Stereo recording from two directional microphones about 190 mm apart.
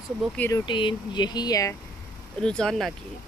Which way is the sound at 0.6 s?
25° left (ahead or behind).